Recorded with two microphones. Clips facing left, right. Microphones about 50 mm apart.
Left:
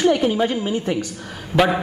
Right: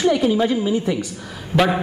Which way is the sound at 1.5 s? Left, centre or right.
Centre.